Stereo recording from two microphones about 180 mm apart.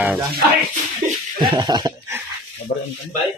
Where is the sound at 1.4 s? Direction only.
25° right (ahead or behind).